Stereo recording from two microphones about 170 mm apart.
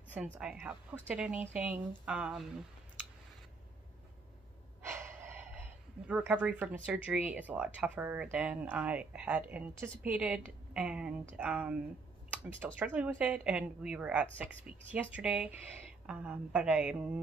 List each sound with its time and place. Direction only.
0.1 s speech: 5° right (ahead or behind)
4.8 s gasp: 10° right (ahead or behind)
6.9 s speech: 10° right (ahead or behind)